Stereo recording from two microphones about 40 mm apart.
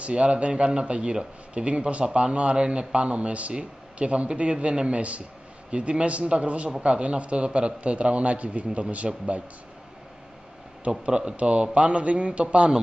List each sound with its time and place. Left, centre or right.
0.0 s speech: right
10.9 s speech: right